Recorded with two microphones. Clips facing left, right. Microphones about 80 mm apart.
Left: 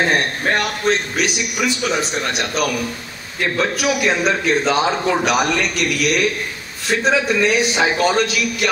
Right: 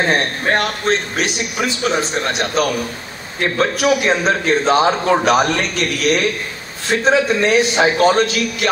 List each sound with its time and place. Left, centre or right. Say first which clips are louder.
0.1 s a man's voice: right 1 dB; right